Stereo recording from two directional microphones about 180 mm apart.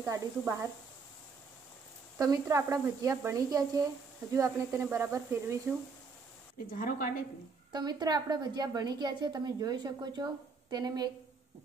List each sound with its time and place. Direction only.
0.0 s speech: 15° right (ahead or behind)
2.1 s a woman's voice: 20° right (ahead or behind)
6.7 s a woman's voice: 50° left (ahead or behind)
7.7 s a woman's voice: 25° right (ahead or behind)